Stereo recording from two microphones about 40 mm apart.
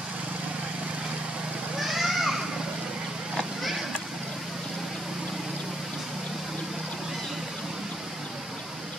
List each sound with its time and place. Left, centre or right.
1.8 s children playing: centre